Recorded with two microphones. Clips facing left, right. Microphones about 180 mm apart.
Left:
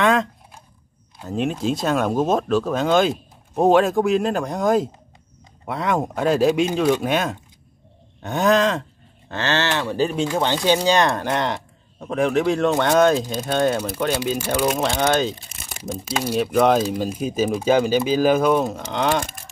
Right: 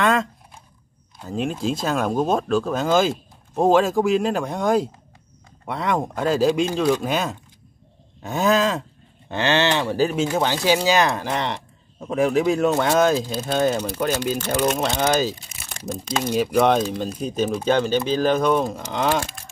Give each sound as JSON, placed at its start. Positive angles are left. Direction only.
{"t": 0.0, "sound": "a sound", "side_deg": 0}
{"t": 1.2, "sound": "speech", "side_deg": 0}
{"t": 9.3, "sound": "speech", "side_deg": -15}
{"t": 9.9, "sound": "speech", "side_deg": -5}
{"t": 15.8, "sound": "speech", "side_deg": 10}